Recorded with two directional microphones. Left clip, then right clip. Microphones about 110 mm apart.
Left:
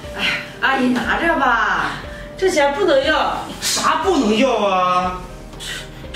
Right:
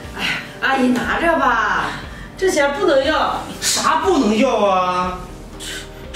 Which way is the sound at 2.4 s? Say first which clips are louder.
Even; 15° right (ahead or behind).